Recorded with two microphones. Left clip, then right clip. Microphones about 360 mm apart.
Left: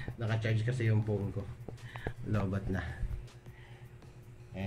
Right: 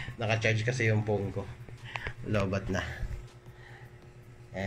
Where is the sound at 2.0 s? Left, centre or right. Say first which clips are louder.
Right 7 dB; right.